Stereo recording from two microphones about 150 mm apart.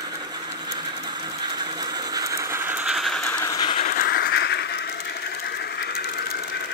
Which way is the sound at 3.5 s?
25° left (ahead or behind).